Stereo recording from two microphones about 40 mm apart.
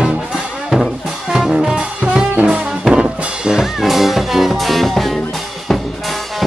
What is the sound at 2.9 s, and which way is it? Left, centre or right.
Drum kit, right.